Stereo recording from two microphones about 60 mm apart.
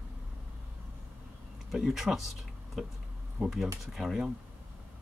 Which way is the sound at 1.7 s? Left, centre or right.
Centre.